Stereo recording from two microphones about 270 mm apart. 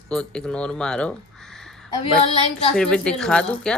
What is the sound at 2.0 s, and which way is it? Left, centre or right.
Female singing, left.